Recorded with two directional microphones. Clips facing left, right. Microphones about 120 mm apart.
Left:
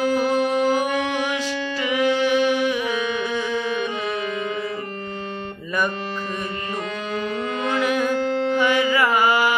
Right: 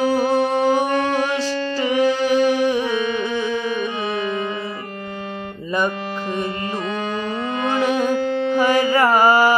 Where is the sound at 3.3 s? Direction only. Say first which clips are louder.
Right 2 dB; 20° right (ahead or behind).